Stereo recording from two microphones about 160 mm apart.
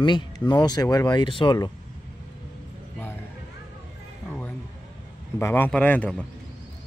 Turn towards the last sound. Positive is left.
turn(degrees=10)  # may be behind; listen again after turning